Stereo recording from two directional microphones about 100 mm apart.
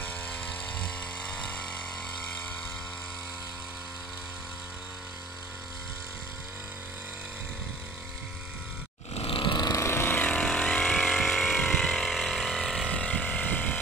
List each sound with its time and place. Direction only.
0.0 s a sound: 20° left (ahead or behind)
9.1 s vehicle: 70° left (ahead or behind); by 9.8 s 50° left (ahead or behind)
9.8 s vehicle: 25° left (ahead or behind)
10.2 s vehicle: 5° left (ahead or behind)
12.9 s vehicle: 15° left (ahead or behind)